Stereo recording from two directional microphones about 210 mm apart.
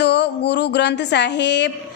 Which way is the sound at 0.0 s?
55° left (ahead or behind).